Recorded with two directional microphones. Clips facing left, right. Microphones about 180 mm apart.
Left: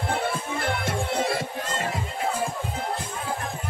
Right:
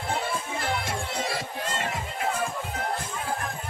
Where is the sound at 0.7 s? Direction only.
55° left (ahead or behind).